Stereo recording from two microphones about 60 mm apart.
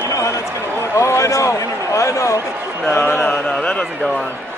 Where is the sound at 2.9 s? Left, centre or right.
Left.